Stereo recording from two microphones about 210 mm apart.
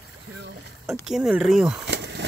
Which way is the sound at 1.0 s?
Centre (ahead or behind).